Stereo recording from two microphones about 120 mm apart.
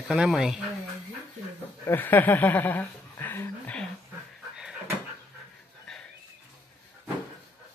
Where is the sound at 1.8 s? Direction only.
15° left (ahead or behind).